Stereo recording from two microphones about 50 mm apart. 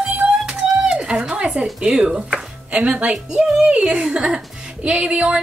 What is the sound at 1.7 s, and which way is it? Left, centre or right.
Speech, centre.